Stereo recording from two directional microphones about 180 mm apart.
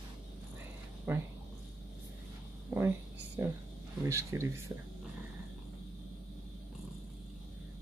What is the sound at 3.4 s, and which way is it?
Speech, 10° right (ahead or behind).